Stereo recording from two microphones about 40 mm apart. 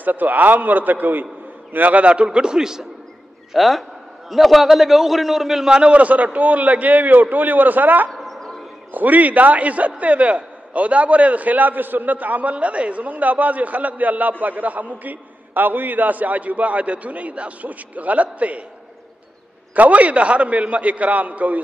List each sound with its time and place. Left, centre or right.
0.0 s a man's voice: right
2.2 s a man's voice: centre
3.5 s a man's voice: centre
5.7 s a man's voice: right
8.1 s a sound: centre
8.9 s a man's voice: right
19.7 s a man's voice: right